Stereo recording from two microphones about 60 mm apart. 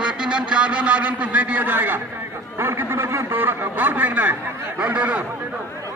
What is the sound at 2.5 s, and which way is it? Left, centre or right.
A man's voice, right.